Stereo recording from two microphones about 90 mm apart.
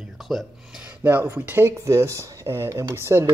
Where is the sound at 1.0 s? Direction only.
25° right (ahead or behind).